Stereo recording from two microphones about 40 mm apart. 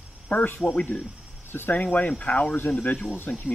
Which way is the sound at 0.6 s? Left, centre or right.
Left.